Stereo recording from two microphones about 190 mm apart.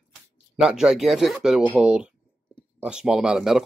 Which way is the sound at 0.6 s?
5° right (ahead or behind).